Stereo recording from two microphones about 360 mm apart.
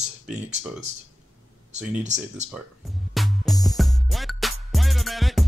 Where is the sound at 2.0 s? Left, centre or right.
Centre.